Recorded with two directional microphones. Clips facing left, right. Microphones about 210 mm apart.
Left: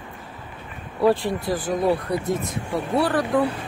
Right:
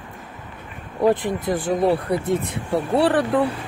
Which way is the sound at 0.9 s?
20° right (ahead or behind).